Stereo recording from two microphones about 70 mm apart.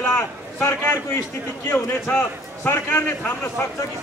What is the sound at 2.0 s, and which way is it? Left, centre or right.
Speech, centre.